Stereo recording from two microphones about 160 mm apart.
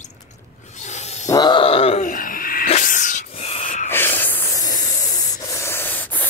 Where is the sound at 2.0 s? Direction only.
60° left (ahead or behind).